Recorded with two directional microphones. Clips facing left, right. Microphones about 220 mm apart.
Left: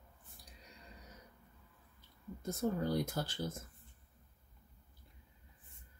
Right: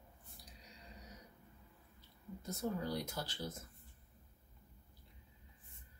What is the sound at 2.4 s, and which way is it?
Speech, 50° left (ahead or behind).